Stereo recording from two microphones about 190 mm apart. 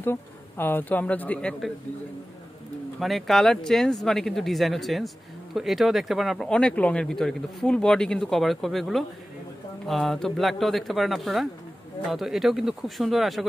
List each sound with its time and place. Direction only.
0.0 s a man's voice: 10° left (ahead or behind)
3.0 s speech: centre (ahead or behind)